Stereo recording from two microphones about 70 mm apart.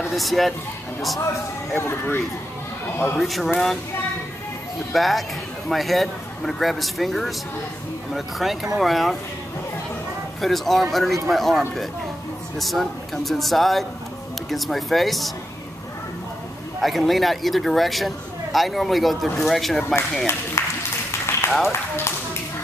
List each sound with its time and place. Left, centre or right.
0.1 s speech: centre
1.8 s speech: left
3.2 s speech: centre
4.9 s speech: centre
10.4 s speech: centre
16.8 s speech: centre
20.6 s a sound: left
21.5 s speech: centre